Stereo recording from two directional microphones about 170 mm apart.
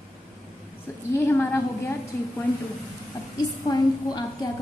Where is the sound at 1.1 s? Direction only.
10° left (ahead or behind).